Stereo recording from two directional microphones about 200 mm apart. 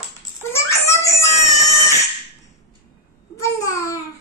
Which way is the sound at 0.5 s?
15° left (ahead or behind).